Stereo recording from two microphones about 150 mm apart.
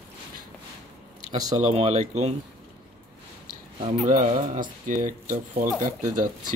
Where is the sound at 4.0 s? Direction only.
60° right (ahead or behind).